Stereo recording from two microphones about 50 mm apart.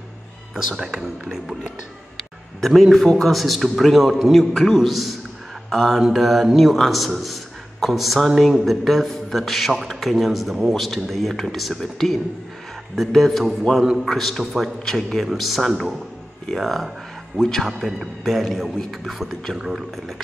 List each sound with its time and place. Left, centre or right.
0.7 s speech: centre
2.6 s a man's voice: centre
5.7 s mantra: centre
5.9 s a man's voice: centre